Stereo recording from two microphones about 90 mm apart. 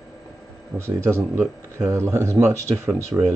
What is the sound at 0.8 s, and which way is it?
Speech, 30° right (ahead or behind).